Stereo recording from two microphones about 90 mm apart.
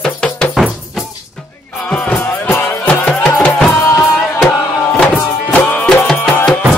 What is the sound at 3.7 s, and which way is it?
Music, 35° left (ahead or behind).